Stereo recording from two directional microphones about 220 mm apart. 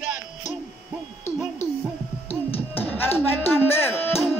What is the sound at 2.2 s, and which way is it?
Music, 25° left (ahead or behind).